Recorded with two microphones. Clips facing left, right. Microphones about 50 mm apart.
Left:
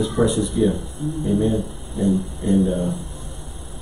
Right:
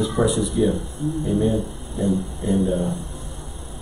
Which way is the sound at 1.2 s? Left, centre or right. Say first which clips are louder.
Left 1 dB; centre.